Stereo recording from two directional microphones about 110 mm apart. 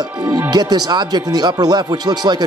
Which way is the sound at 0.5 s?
40° right (ahead or behind).